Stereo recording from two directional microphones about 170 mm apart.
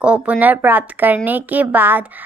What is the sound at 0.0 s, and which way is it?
A woman's voice, 5° right (ahead or behind).